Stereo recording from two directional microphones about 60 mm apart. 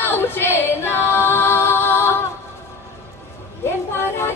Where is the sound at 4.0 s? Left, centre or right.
Left.